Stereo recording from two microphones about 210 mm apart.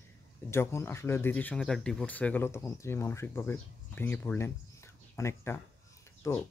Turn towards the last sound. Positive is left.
turn(degrees=15)  # may be behind; listen again after turning